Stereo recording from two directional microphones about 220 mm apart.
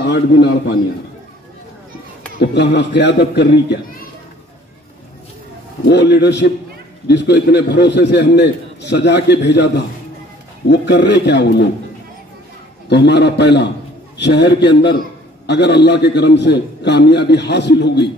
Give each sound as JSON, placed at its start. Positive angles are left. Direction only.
{"t": 0.0, "sound": "a man's voice", "side_deg": 50}
{"t": 2.3, "sound": "a man's voice", "side_deg": 50}
{"t": 5.9, "sound": "a man's voice", "side_deg": 50}
{"t": 12.9, "sound": "a man's voice", "side_deg": 50}